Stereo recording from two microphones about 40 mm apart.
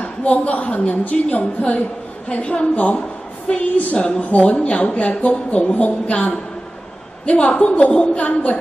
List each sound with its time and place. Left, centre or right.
0.0 s a woman's voice: left